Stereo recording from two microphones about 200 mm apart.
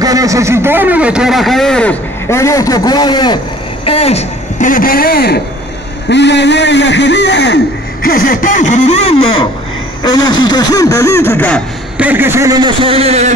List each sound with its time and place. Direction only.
0.0 s a man's voice: 15° right (ahead or behind); by 5.4 s 50° left (ahead or behind)
6.0 s a man's voice: 60° left (ahead or behind); by 11.6 s 10° left (ahead or behind)
12.0 s a man's voice: 10° right (ahead or behind); by 13.3 s 30° right (ahead or behind)